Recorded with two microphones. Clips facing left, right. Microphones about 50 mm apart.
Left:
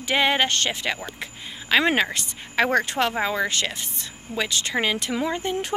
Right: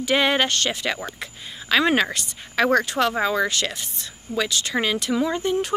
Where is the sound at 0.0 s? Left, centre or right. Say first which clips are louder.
Right 1 dB; centre.